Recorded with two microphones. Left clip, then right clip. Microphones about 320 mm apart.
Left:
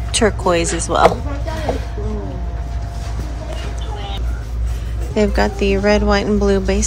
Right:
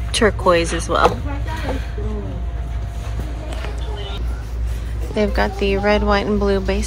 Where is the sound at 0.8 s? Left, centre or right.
Centre.